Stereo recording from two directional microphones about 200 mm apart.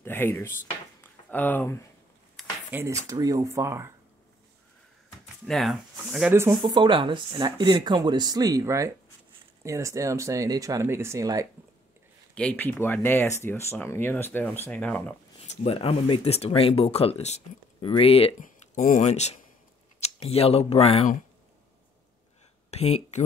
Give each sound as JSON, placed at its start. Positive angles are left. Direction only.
{"t": 0.0, "sound": "dishes", "side_deg": 10}
{"t": 1.0, "sound": "speech", "side_deg": 10}
{"t": 2.4, "sound": "a sound", "side_deg": 0}
{"t": 2.7, "sound": "speech", "side_deg": -10}
{"t": 5.5, "sound": "speech", "side_deg": 0}
{"t": 6.3, "sound": "speech", "side_deg": -15}
{"t": 12.4, "sound": "speech", "side_deg": 10}
{"t": 15.4, "sound": "speech", "side_deg": 35}
{"t": 18.4, "sound": "speech", "side_deg": 40}
{"t": 22.7, "sound": "a sound", "side_deg": 30}